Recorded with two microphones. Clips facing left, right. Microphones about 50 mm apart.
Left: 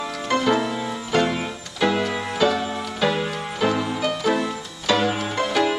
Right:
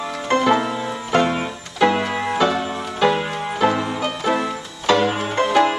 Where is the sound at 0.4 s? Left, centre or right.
Right.